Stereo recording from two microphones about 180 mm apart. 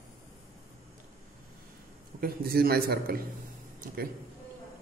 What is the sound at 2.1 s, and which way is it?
A man's voice, 55° right (ahead or behind).